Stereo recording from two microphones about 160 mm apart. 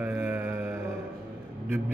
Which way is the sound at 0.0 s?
10° right (ahead or behind).